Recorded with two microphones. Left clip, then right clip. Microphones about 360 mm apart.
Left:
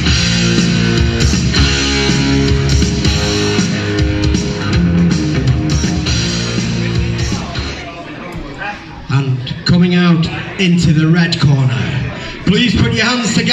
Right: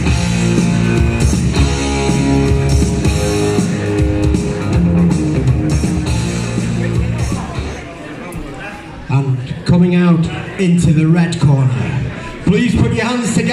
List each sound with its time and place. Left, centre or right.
0.0 s music: right
9.7 s a sound: right
10.6 s a man's voice: right
12.4 s music: right